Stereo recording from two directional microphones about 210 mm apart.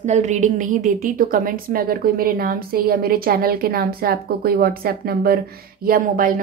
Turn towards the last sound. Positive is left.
turn(degrees=-40)  # may be behind; listen again after turning